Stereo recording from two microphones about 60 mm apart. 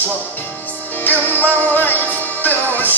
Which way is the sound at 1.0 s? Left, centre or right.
Left.